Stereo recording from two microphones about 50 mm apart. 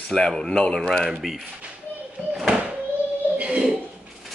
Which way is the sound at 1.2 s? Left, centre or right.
Centre.